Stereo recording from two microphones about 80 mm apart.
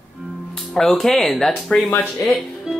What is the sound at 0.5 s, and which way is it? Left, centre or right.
Speech, centre.